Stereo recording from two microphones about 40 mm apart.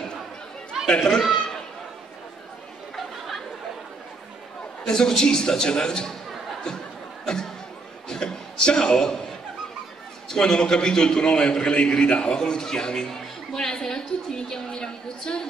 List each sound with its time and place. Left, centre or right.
0.8 s a man's voice: centre
4.8 s a man's voice: centre
7.3 s a sound: centre
10.3 s a man's voice: centre